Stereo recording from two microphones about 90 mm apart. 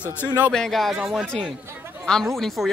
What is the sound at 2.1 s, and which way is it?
Speech, 5° left (ahead or behind).